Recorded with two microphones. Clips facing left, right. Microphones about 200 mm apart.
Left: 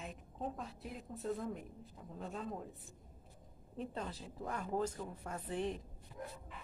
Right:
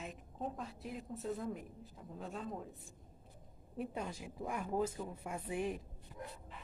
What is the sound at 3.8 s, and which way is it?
A woman's voice, 10° right (ahead or behind).